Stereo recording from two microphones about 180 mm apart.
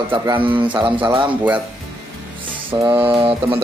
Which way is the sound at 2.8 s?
30° right (ahead or behind).